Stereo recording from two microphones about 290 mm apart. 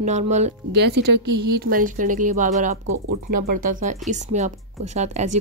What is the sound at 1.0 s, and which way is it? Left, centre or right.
Speech, right.